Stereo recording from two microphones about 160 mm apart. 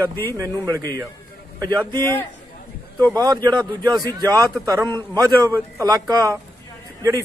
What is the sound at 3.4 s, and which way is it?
A man's voice, 25° right (ahead or behind).